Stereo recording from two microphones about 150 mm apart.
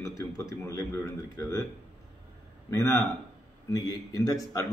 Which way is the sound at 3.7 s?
20° left (ahead or behind).